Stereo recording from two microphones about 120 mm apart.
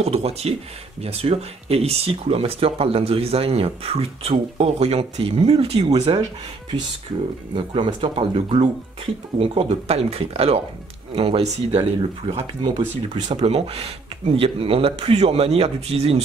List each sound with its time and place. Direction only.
0.0 s speech: 60° right (ahead or behind)
7.5 s speech: 45° right (ahead or behind)
13.4 s speech: 60° right (ahead or behind)